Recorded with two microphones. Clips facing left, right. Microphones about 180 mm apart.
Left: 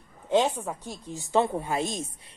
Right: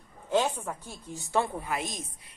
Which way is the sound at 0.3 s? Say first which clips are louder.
Left 3 dB; 15° left (ahead or behind).